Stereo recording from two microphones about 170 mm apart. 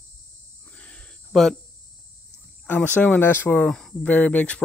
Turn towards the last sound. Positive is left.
turn(degrees=10)  # may be behind; listen again after turning